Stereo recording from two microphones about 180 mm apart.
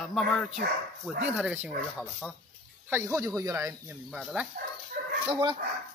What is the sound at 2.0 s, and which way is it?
Speech, 10° left (ahead or behind).